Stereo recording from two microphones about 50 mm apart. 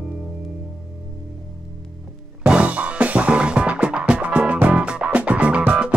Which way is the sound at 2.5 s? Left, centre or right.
Right.